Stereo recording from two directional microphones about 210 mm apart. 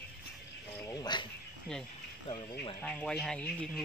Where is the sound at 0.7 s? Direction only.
15° left (ahead or behind).